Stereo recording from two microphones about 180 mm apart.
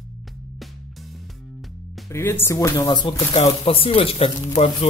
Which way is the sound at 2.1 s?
15° left (ahead or behind).